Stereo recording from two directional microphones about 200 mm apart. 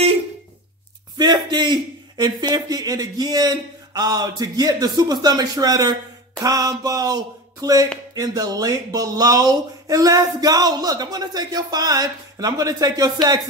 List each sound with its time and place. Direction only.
1.1 s speech: 20° right (ahead or behind)